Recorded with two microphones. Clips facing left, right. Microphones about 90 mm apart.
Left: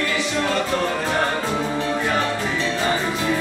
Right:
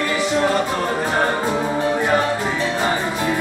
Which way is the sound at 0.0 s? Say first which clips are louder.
Right 4 dB; 25° right (ahead or behind).